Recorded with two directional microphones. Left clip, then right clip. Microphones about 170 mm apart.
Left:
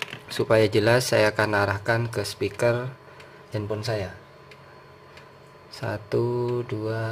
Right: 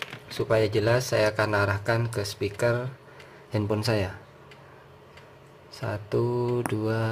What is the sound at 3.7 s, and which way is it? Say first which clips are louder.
Speech: right 2 dB; 25° right (ahead or behind).